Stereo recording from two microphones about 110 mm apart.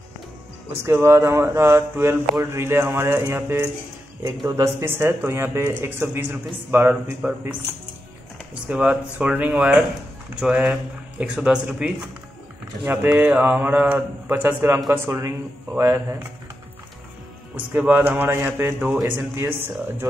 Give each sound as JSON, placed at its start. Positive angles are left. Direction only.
{"t": 0.8, "sound": "speech", "side_deg": -25}
{"t": 8.6, "sound": "speech", "side_deg": -10}
{"t": 17.6, "sound": "speech", "side_deg": -15}